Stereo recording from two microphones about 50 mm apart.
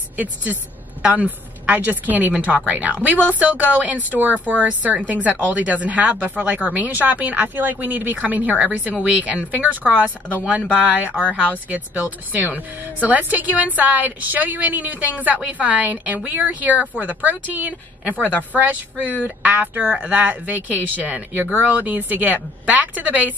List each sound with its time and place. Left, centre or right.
0.2 s a woman's voice: right
2.6 s a woman's voice: right